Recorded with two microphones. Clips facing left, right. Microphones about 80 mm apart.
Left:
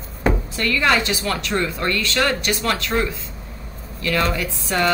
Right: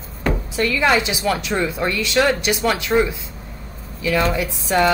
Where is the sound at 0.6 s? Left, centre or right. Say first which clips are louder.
Right 2 dB; centre.